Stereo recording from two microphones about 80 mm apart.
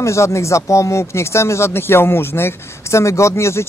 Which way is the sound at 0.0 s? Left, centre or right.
Left.